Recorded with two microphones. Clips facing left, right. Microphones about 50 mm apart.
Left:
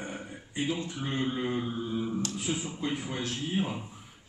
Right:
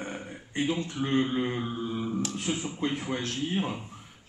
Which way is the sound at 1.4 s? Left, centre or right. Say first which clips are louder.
Right 1 dB; centre.